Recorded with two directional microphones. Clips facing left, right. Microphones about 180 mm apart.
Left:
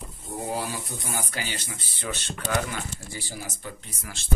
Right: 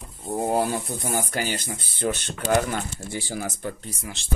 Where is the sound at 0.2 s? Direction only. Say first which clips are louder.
Right 8 dB; 50° right (ahead or behind).